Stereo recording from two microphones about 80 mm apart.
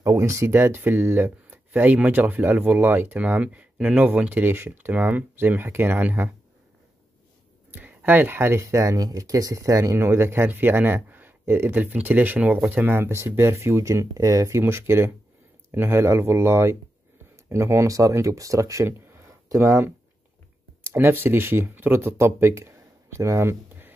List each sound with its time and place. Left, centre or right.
0.0 s speech: right
7.7 s speech: right
14.6 s speech: right
20.8 s speech: right